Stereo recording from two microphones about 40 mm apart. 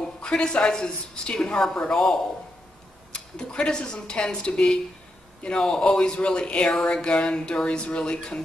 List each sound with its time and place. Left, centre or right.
0.2 s a man's voice: left
5.6 s a man's voice: centre
5.9 s speech: left